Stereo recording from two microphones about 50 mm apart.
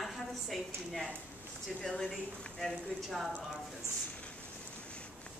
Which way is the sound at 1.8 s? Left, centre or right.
Centre.